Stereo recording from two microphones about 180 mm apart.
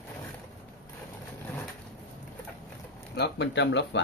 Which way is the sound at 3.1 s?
70° left (ahead or behind).